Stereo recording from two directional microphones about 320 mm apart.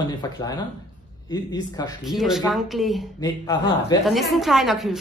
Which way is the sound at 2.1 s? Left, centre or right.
Centre.